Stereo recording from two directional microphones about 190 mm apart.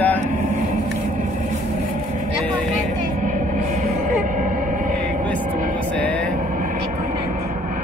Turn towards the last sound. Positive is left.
turn(degrees=5)  # may be behind; listen again after turning